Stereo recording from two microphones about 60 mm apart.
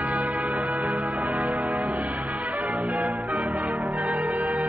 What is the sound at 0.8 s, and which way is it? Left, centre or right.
Music, centre.